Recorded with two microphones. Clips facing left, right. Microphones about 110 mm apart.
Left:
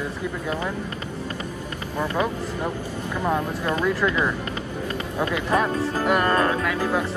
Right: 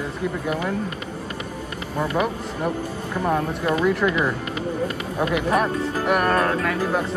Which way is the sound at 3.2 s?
20° right (ahead or behind).